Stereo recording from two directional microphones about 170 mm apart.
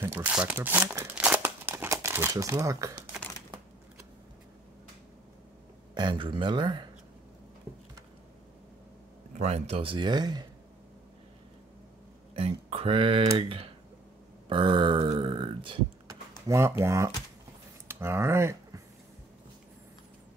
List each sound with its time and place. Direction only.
0.0 s speech: 10° right (ahead or behind)
5.9 s speech: 30° right (ahead or behind)
9.3 s speech: 40° right (ahead or behind); by 10.4 s 25° right (ahead or behind)
12.4 s speech: 35° right (ahead or behind)
14.5 s a sound: 30° right (ahead or behind)
16.4 s speech: 15° right (ahead or behind)
17.8 s a sound: 15° right (ahead or behind)